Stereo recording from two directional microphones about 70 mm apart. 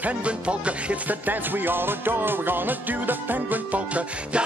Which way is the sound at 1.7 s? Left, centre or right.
Right.